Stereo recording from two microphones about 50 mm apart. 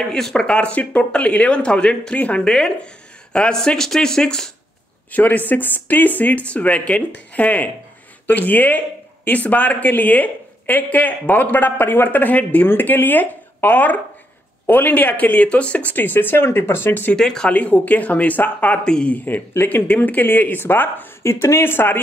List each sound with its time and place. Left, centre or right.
0.1 s speech: centre
0.5 s speech: left
2.4 s speech: centre
5.1 s speech: left
16.4 s speech: left
17.1 s speech: centre
17.5 s speech: left
18.9 s speech: centre
19.1 s speech: left
19.9 s speech: left
21.2 s speech: left